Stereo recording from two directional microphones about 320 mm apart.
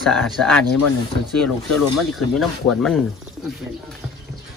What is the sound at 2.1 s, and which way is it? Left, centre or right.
Speech, centre.